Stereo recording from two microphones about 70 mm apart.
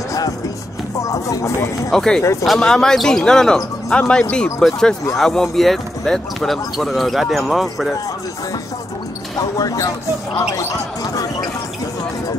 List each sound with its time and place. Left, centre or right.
0.9 s music: left
1.9 s a man's voice: centre
9.6 s speech: left